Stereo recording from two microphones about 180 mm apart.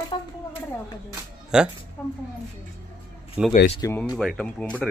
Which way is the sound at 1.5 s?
5° right (ahead or behind).